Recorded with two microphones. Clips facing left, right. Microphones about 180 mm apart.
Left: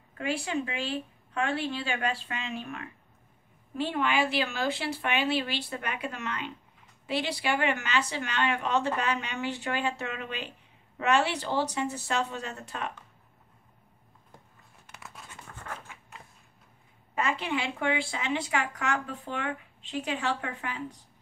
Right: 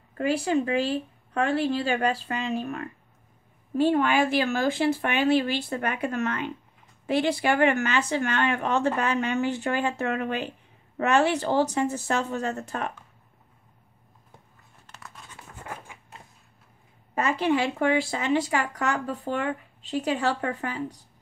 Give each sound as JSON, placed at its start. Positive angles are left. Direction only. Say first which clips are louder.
{"t": 0.2, "sound": "speech", "louder": "right 7 dB", "side_deg": -40}
{"t": 15.0, "sound": "a sound", "louder": "right 1 dB", "side_deg": 0}
{"t": 17.1, "sound": "speech", "louder": "right 6 dB", "side_deg": -40}